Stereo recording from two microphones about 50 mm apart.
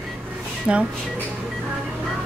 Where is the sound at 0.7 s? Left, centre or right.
Right.